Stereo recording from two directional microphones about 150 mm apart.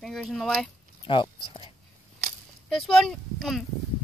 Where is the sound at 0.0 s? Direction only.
5° left (ahead or behind).